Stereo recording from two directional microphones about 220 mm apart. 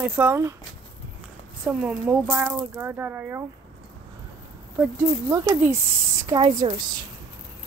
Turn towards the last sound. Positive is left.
turn(degrees=-20)  # may be behind; listen again after turning